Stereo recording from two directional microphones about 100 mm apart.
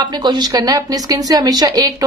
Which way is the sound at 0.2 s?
45° right (ahead or behind).